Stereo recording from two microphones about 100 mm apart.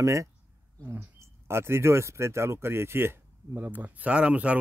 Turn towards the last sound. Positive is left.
turn(degrees=-10)  # may be behind; listen again after turning